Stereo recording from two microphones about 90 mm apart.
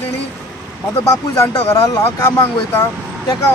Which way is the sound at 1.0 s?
35° left (ahead or behind).